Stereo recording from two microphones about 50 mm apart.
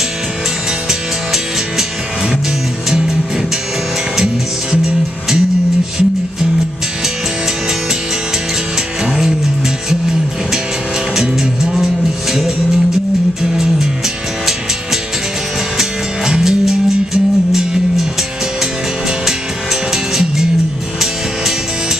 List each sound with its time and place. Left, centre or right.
0.8 s music: centre
9.0 s music: centre
11.1 s music: centre
13.4 s music: centre
15.8 s music: centre